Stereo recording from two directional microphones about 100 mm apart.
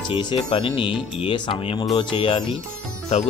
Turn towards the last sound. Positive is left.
turn(degrees=90)